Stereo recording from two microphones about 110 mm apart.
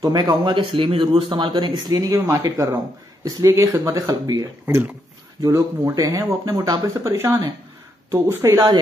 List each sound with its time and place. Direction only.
0.0 s speech: 40° right (ahead or behind)